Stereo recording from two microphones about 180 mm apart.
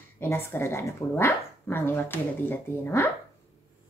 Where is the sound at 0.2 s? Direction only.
15° left (ahead or behind).